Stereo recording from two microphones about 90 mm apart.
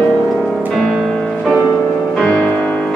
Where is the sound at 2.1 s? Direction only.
15° left (ahead or behind).